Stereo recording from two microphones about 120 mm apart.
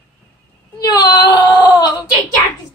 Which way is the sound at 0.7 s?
35° left (ahead or behind).